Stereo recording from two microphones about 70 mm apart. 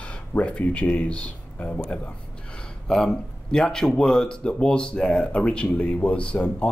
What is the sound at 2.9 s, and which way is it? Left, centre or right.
Speech, centre.